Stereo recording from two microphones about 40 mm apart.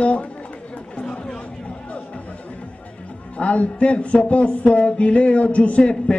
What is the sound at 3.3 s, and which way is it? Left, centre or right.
A man's voice, left.